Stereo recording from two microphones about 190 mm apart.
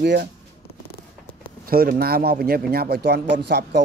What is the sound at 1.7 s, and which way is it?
A man's voice, 50° right (ahead or behind).